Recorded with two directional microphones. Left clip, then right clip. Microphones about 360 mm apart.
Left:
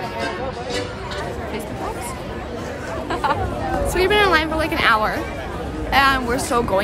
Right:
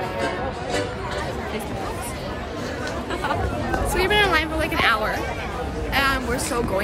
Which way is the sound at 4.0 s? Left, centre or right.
Centre.